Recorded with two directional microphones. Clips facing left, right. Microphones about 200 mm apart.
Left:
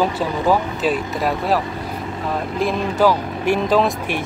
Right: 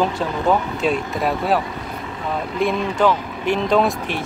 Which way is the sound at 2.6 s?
5° left (ahead or behind).